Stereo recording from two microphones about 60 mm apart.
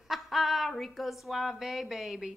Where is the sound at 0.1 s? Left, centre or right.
Centre.